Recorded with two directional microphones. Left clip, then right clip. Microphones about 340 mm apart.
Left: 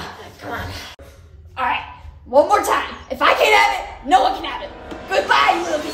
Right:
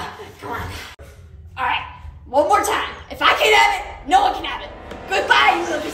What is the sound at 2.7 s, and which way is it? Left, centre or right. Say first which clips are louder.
Speech: left 2 dB; left.